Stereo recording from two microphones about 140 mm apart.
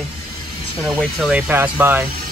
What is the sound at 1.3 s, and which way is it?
Speech, 10° right (ahead or behind).